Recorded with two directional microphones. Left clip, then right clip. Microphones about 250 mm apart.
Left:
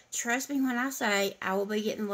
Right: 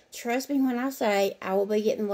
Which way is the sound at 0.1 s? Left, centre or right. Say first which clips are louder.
Right 1 dB; centre.